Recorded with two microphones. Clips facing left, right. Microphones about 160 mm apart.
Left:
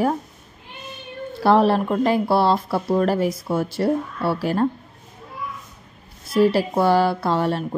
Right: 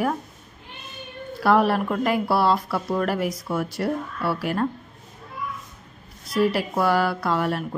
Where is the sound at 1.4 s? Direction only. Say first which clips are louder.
Left 3 dB; 25° left (ahead or behind).